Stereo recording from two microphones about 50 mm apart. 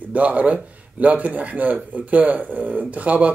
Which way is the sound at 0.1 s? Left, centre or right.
Right.